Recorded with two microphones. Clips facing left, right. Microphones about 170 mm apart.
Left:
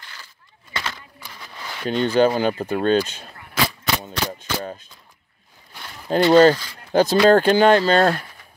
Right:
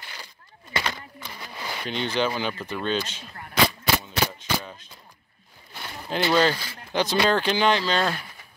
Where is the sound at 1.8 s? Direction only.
45° left (ahead or behind).